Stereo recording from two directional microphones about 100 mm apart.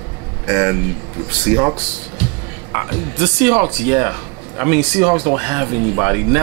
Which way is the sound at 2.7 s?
15° right (ahead or behind).